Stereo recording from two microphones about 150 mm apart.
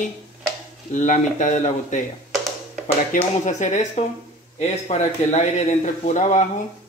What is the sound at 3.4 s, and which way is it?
Speech, 55° left (ahead or behind).